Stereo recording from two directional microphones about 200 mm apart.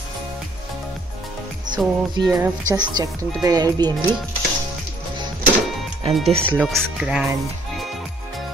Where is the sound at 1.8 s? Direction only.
Centre (ahead or behind).